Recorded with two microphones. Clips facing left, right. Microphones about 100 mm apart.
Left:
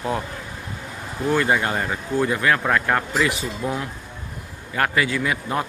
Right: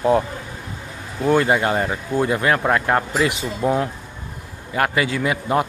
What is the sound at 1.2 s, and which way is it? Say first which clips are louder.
Speech: right 4 dB; 40° right (ahead or behind).